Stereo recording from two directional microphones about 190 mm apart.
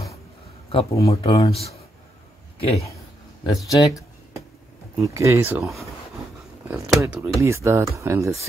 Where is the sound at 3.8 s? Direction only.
20° left (ahead or behind).